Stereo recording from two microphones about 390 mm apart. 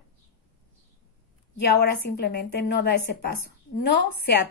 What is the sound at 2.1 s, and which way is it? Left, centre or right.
A woman's voice, left.